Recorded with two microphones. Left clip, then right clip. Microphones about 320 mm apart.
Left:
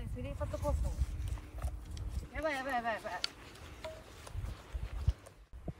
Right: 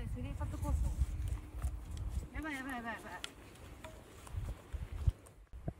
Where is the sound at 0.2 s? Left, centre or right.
Centre.